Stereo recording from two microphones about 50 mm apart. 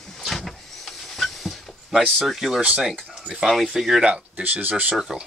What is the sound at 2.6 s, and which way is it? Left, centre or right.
Speech, centre.